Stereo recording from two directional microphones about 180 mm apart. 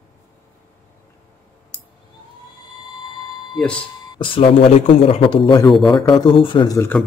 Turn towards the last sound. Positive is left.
turn(degrees=10)  # may be behind; listen again after turning